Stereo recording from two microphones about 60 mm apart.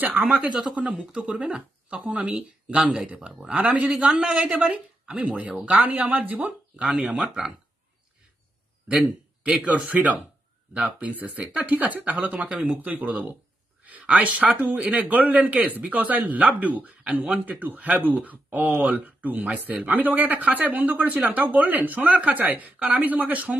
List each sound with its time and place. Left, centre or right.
0.0 s a man's voice: right
3.8 s a man's voice: centre
8.8 s a man's voice: centre